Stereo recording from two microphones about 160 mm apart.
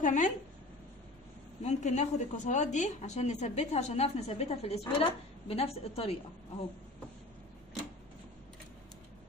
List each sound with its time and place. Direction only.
0.0 s a woman's voice: 50° left (ahead or behind)
1.6 s a woman's voice: 45° left (ahead or behind)